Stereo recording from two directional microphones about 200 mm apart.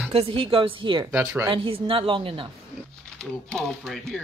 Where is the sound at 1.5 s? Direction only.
25° right (ahead or behind).